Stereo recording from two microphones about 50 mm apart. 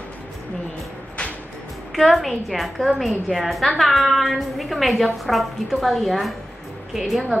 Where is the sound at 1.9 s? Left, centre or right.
Centre.